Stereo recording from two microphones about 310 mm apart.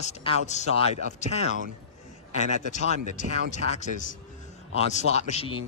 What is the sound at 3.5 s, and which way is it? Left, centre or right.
Speech, left.